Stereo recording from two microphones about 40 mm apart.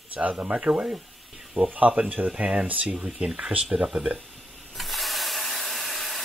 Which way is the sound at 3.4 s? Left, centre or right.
Right.